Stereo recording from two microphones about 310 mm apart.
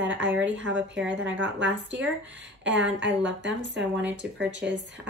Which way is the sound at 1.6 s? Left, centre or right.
Right.